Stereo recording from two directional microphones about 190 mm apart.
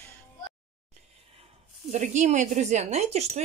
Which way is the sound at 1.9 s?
40° right (ahead or behind).